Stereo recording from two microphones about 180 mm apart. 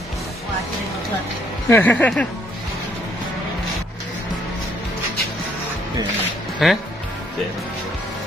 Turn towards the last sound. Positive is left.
turn(degrees=0)  # may be behind; listen again after turning